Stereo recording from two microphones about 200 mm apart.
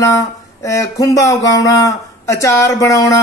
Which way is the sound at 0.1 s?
15° left (ahead or behind).